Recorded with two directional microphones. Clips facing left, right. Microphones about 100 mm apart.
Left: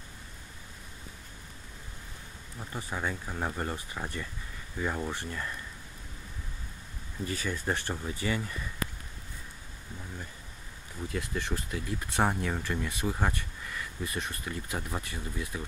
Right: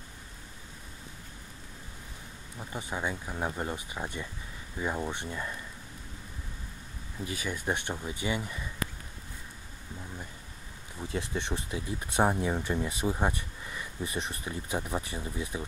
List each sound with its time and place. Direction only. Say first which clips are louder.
2.7 s speech: right 1 dB; 15° right (ahead or behind)
7.2 s speech: even; 10° right (ahead or behind)
11.0 s speech: right 1 dB; 25° right (ahead or behind)